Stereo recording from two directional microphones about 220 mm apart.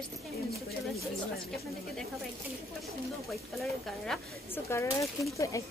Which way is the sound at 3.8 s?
Centre (ahead or behind).